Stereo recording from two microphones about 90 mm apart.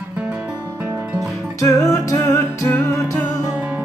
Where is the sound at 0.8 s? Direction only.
25° right (ahead or behind).